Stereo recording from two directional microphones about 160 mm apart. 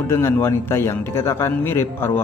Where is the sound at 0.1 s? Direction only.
15° left (ahead or behind).